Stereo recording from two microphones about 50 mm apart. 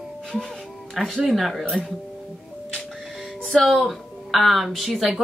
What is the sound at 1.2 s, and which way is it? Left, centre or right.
Speech, centre.